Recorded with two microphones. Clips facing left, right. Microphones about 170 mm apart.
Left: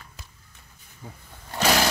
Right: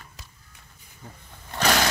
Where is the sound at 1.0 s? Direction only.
10° left (ahead or behind).